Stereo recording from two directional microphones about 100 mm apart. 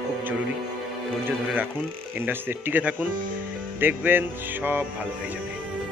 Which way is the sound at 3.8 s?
20° right (ahead or behind).